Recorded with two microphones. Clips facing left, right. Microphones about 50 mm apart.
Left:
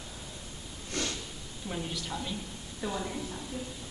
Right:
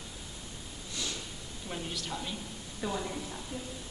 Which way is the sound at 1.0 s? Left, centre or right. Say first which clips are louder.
Left 5 dB; left.